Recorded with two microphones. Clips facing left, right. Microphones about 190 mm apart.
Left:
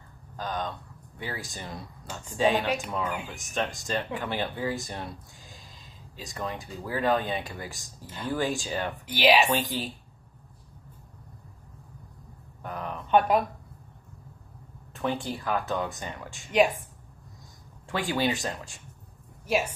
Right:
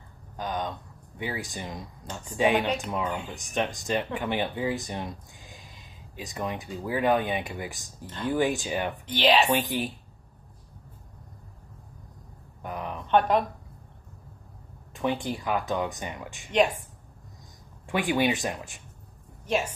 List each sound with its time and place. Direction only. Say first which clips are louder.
0.4 s speech: right 1 dB; 15° right (ahead or behind)
9.0 s speech: left 1 dB; 10° left (ahead or behind)
9.5 s speech: right 2 dB; 15° right (ahead or behind)
12.6 s a sound: right 1 dB; 15° right (ahead or behind)
13.1 s speech: even; 5° left (ahead or behind)
15.0 s speech: right 2 dB; 15° right (ahead or behind)
17.8 s speech: right 3 dB; 15° right (ahead or behind)
19.4 s speech: even; 10° left (ahead or behind)